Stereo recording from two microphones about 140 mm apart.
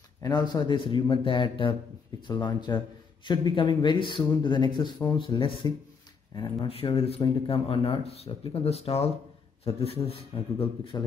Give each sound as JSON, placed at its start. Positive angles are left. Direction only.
{"t": 0.2, "sound": "speech", "side_deg": 30}